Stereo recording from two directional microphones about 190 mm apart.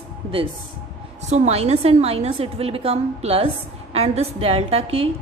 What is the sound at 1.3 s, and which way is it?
A woman's voice, 35° right (ahead or behind).